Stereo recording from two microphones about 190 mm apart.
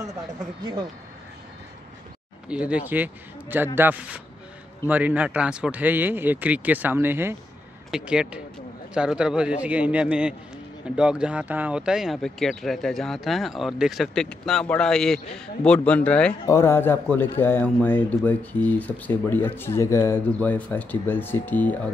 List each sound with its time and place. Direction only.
2.4 s speech: 5° right (ahead or behind); by 21.7 s 10° left (ahead or behind)